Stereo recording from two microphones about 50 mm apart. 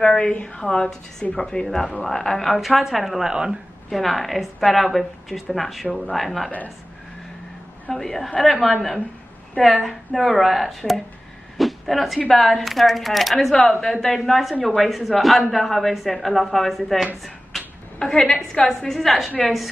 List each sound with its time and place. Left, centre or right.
0.0 s a woman's voice: left
0.6 s a woman's voice: centre
7.9 s speech: centre
9.8 s speech: centre
11.5 s a sound: centre
12.3 s speech: centre
17.9 s a woman's voice: centre